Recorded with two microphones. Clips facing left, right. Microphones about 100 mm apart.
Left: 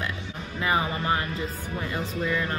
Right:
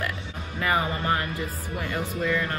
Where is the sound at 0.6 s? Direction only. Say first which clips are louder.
Even; 20° left (ahead or behind).